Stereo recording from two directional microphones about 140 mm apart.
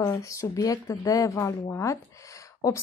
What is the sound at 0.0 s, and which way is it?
Speech, 20° left (ahead or behind).